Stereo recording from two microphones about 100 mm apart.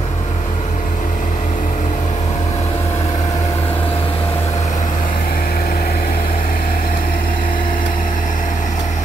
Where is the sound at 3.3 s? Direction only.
35° left (ahead or behind).